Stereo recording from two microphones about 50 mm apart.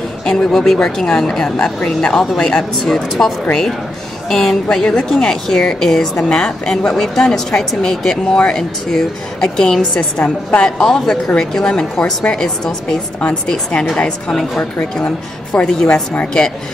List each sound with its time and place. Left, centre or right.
0.2 s speech: centre
9.9 s a woman's voice: left
10.8 s speech: centre
13.2 s a woman's voice: left